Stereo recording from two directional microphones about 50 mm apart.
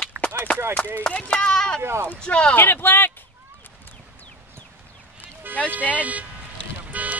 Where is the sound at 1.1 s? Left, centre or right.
Left.